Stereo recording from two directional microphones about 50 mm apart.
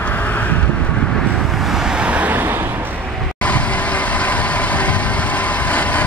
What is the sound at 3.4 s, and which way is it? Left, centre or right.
Vehicle, left.